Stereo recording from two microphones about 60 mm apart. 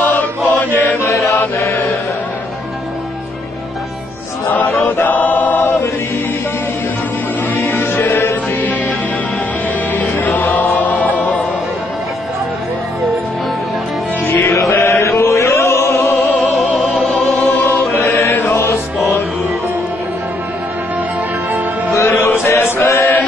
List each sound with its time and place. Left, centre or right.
0.5 s mantra: left
1.0 s chant: left
1.6 s mantra: left
4.5 s chant: left
7.5 s music: left
9.9 s music: left
14.2 s music: left
14.7 s chant: left
17.3 s music: centre
17.7 s music: left
21.5 s music: right
22.0 s chant: left